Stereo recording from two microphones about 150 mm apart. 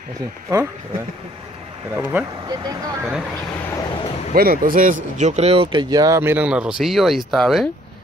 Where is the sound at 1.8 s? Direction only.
15° right (ahead or behind).